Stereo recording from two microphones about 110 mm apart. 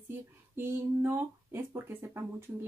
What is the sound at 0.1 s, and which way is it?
Speech, 20° right (ahead or behind).